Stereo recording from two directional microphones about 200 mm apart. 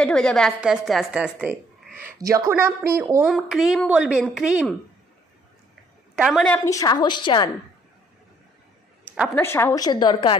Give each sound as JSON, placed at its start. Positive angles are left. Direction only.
{"t": 0.0, "sound": "a woman's voice", "side_deg": 5}
{"t": 2.1, "sound": "a woman's voice", "side_deg": -15}
{"t": 6.1, "sound": "a woman's voice", "side_deg": 0}
{"t": 6.5, "sound": "a woman's voice", "side_deg": 15}
{"t": 9.0, "sound": "a sound", "side_deg": -5}
{"t": 9.3, "sound": "a woman's voice", "side_deg": 10}